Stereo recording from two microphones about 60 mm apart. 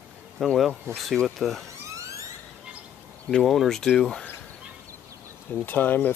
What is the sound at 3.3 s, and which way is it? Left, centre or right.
Speech, centre.